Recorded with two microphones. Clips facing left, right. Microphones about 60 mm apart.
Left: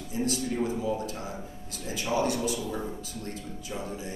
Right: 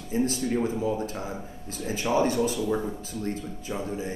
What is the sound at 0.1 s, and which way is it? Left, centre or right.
A man's voice, right.